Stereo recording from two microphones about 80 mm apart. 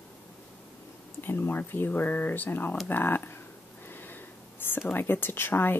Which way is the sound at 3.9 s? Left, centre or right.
Left.